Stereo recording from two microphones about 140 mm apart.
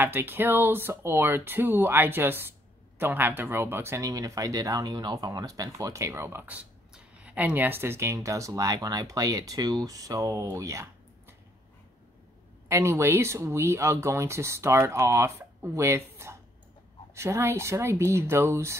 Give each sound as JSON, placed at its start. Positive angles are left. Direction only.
{"t": 0.0, "sound": "speech", "side_deg": -15}
{"t": 12.6, "sound": "speech", "side_deg": -20}